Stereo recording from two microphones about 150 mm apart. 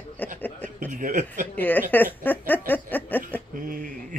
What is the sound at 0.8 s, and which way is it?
Speech, 60° right (ahead or behind).